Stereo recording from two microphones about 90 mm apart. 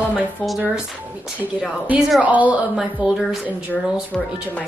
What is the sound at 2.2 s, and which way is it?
Speech, 15° right (ahead or behind).